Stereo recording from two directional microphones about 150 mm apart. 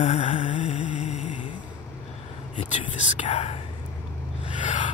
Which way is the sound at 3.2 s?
40° left (ahead or behind).